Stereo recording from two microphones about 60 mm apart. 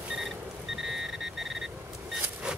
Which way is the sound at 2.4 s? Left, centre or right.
Centre.